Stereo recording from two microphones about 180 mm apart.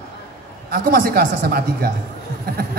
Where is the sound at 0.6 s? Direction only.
55° right (ahead or behind).